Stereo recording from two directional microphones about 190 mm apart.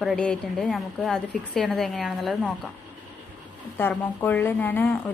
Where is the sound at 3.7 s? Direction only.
10° left (ahead or behind).